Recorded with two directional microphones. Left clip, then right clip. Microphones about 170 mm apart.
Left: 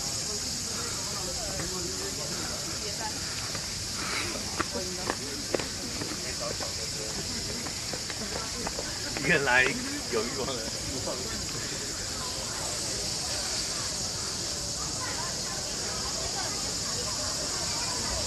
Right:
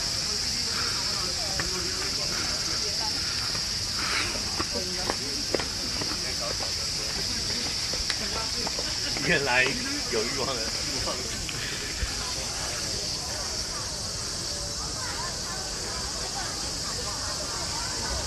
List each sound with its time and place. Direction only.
9.3 s speech: 25° right (ahead or behind)